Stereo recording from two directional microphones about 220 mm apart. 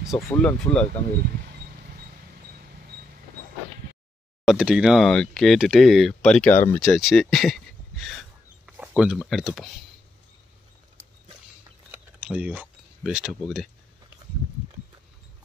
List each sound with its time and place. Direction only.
0.1 s speech: 5° left (ahead or behind)
4.5 s speech: 5° right (ahead or behind)
11.9 s a sound: 5° right (ahead or behind)